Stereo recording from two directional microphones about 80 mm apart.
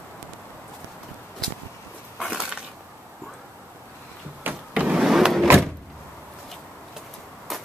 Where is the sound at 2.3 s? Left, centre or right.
Centre.